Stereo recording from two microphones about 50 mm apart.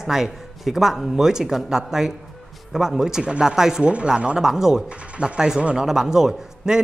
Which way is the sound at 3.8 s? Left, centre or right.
Right.